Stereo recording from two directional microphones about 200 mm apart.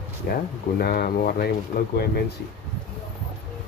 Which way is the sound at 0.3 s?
50° left (ahead or behind).